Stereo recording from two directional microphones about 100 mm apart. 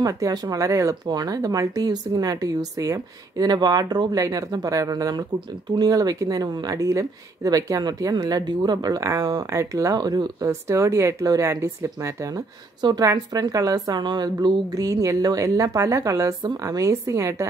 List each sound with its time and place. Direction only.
0.0 s speech: 35° right (ahead or behind)
10.5 s speech: 30° right (ahead or behind)
12.8 s speech: 40° right (ahead or behind)